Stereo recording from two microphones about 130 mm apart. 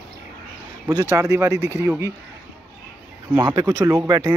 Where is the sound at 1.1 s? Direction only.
20° right (ahead or behind).